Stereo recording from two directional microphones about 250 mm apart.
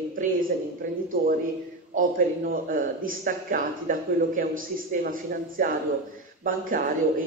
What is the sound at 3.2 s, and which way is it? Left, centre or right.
A man's voice, right.